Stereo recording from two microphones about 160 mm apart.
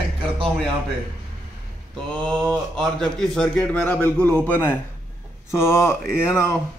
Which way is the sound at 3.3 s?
5° left (ahead or behind).